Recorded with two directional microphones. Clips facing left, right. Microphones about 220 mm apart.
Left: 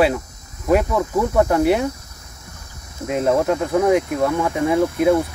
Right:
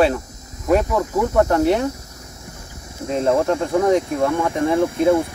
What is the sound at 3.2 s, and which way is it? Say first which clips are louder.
Speech: even; 5° left (ahead or behind).